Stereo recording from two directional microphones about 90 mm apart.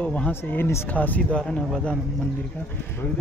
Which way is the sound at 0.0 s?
15° left (ahead or behind).